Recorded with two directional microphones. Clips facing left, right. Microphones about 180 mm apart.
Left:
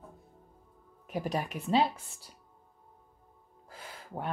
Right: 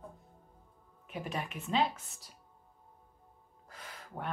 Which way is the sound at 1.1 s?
40° left (ahead or behind).